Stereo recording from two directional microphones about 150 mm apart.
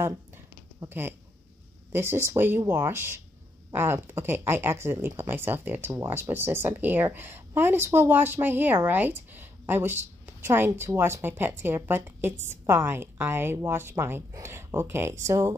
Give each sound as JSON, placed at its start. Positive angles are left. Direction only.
{"t": 0.7, "sound": "speech", "side_deg": -15}